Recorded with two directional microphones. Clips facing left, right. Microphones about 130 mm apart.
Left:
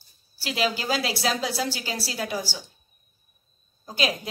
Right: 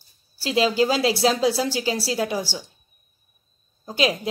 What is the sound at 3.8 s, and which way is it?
Speech, 25° right (ahead or behind).